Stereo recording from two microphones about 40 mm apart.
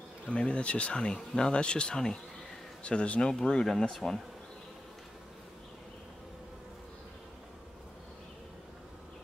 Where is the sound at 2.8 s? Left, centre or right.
Left.